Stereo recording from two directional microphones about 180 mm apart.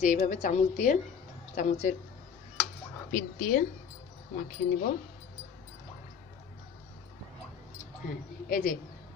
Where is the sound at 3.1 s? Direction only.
50° left (ahead or behind).